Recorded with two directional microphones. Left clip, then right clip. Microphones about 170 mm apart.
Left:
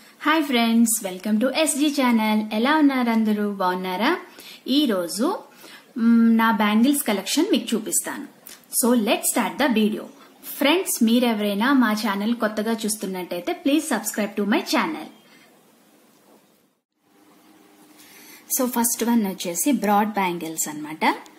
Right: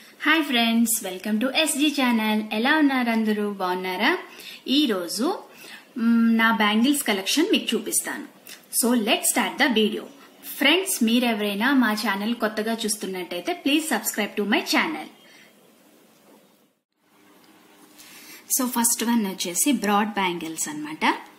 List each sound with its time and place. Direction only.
0.2 s a woman's voice: 70° left (ahead or behind)
18.5 s a woman's voice: 40° left (ahead or behind)